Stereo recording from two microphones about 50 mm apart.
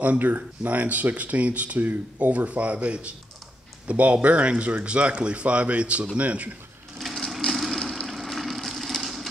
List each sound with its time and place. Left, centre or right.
0.0 s speech: right
7.0 s sewing machine: centre
8.1 s vehicle: centre